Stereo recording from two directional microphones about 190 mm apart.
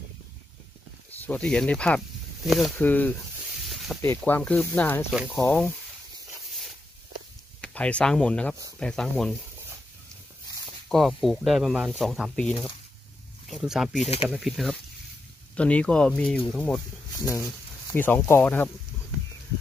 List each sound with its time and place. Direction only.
1.2 s speech: 5° left (ahead or behind)
3.7 s snake: centre (ahead or behind)
4.0 s speech: 10° left (ahead or behind)
7.6 s speech: 5° left (ahead or behind)
10.9 s speech: centre (ahead or behind)
12.4 s speech: 25° left (ahead or behind)
13.5 s speech: centre (ahead or behind)
14.0 s speech: 35° left (ahead or behind)
14.3 s speech: centre (ahead or behind)
17.8 s speech: 10° left (ahead or behind)